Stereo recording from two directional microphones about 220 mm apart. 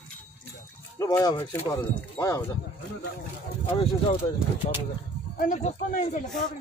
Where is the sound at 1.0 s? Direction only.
15° left (ahead or behind).